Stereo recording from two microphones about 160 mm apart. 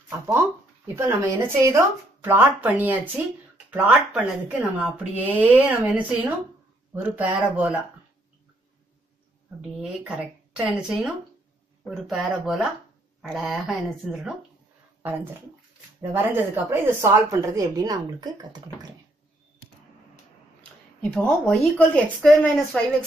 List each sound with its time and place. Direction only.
0.9 s speech: 15° right (ahead or behind)
9.8 s a woman's voice: 5° right (ahead or behind)
15.0 s a woman's voice: 15° right (ahead or behind)
21.0 s speech: 5° left (ahead or behind)